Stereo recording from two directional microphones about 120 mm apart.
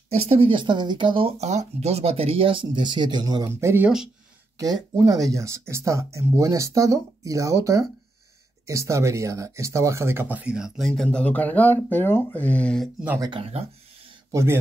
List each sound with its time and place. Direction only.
0.1 s speech: 55° right (ahead or behind)
1.4 s speech: 70° right (ahead or behind); by 3.4 s 35° right (ahead or behind)
3.4 s speech: 20° right (ahead or behind)
3.8 s speech: 5° right (ahead or behind)
4.6 s speech: 35° right (ahead or behind); by 10.9 s 5° right (ahead or behind)
10.9 s speech: 5° left (ahead or behind)
13.3 s speech: 55° right (ahead or behind)
14.3 s speech: 20° right (ahead or behind)